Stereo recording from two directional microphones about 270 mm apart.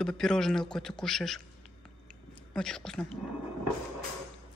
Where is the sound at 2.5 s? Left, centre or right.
Centre.